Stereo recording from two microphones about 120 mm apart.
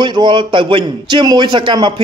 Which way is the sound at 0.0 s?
40° right (ahead or behind).